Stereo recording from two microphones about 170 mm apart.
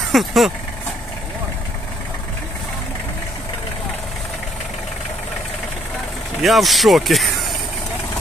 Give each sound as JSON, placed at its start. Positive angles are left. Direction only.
{"t": 0.1, "sound": "speech", "side_deg": 0}
{"t": 6.4, "sound": "speech", "side_deg": 0}